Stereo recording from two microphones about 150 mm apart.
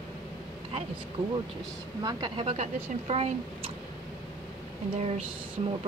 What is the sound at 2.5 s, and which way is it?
Speech, 45° right (ahead or behind).